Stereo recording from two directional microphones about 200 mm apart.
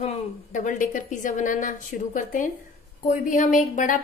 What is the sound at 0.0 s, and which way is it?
A woman's voice, 40° left (ahead or behind).